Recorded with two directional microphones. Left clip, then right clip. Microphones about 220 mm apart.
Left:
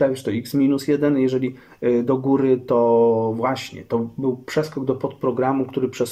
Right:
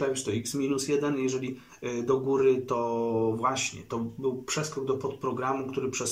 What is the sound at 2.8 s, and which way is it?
Mantra, 35° left (ahead or behind).